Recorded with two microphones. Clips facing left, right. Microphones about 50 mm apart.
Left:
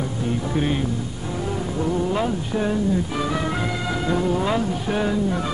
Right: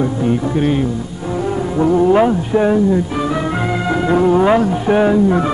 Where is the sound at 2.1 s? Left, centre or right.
Right.